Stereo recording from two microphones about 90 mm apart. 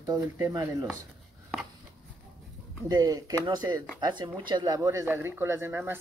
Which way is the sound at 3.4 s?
55° right (ahead or behind).